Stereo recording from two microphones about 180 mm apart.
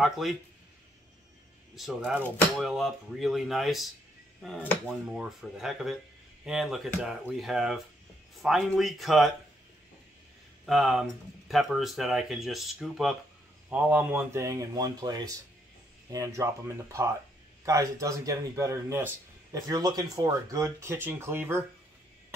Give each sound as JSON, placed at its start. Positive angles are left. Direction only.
{"t": 0.0, "sound": "speech", "side_deg": 0}
{"t": 1.8, "sound": "speech", "side_deg": 0}
{"t": 10.6, "sound": "speech", "side_deg": 0}